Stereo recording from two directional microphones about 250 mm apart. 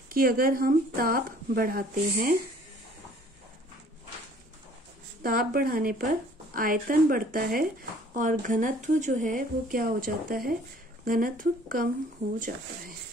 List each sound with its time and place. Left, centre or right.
0.1 s speech: right
5.2 s speech: right